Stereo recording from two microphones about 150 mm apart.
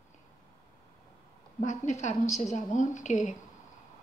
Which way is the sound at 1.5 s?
50° left (ahead or behind).